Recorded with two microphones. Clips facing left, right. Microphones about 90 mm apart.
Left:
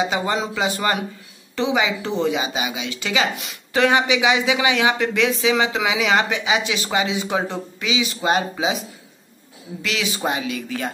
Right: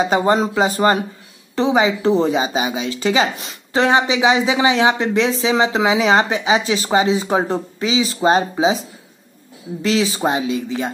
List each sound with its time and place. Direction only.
0.0 s a woman's voice: 40° right (ahead or behind); by 10.9 s 25° right (ahead or behind)